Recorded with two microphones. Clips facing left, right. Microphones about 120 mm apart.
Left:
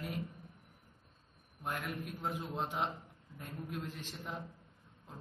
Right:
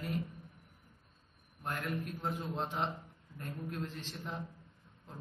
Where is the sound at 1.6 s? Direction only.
5° left (ahead or behind).